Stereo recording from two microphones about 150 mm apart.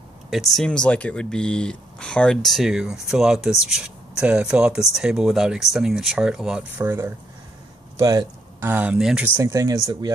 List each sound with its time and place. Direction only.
0.3 s speech: centre (ahead or behind)
6.9 s speech: 15° right (ahead or behind)
9.4 s speech: 20° right (ahead or behind)